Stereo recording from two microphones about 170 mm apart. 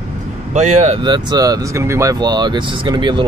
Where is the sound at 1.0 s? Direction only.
25° right (ahead or behind).